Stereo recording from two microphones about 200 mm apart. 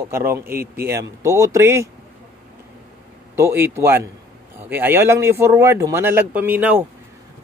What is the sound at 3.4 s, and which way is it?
A man's voice, 10° right (ahead or behind).